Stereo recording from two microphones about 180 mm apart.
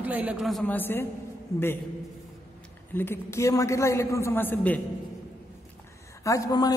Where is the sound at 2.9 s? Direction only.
15° left (ahead or behind).